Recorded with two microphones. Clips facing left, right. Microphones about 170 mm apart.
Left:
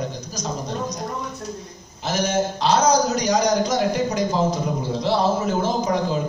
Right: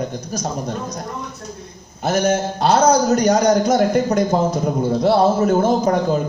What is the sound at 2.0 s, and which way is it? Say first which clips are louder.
A man's voice: right 4 dB; 55° right (ahead or behind).